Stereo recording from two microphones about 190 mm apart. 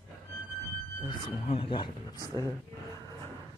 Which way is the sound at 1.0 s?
25° left (ahead or behind).